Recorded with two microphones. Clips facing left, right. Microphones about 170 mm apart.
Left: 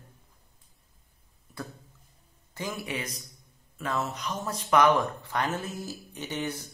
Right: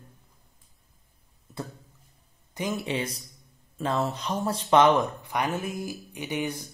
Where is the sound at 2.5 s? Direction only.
20° right (ahead or behind).